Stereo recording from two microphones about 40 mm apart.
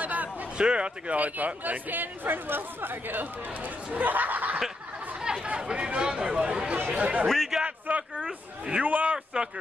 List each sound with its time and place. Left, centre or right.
0.0 s a sound: right
0.6 s speech: right
1.1 s speech: right
5.2 s chatter: centre
5.5 s speech: right
6.9 s speech: right
7.5 s a sound: centre
7.9 s a sound: right
8.3 s speech: right
8.8 s speech: right
9.1 s speech: right